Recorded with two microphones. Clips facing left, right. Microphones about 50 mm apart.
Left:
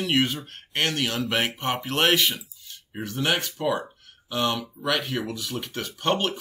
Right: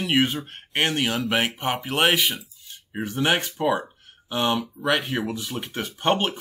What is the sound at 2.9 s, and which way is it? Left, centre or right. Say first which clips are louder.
Speech: right 3 dB; right.